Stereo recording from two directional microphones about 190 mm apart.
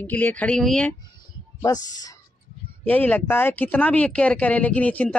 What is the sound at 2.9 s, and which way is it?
Speech, 10° left (ahead or behind).